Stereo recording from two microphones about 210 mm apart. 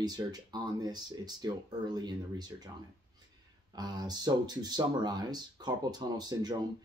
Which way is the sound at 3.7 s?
20° right (ahead or behind).